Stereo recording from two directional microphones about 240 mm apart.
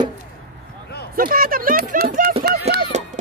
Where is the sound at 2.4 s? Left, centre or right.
Right.